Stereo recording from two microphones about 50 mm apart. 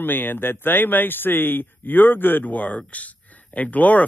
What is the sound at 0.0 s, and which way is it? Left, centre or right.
Speech, left.